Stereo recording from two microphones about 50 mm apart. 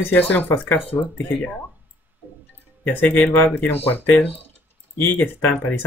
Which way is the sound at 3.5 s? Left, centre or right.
Left.